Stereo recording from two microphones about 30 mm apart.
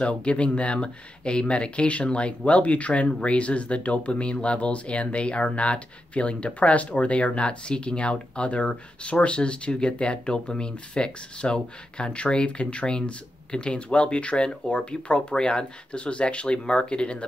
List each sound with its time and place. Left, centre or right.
0.0 s speech: left
7.3 s speech: left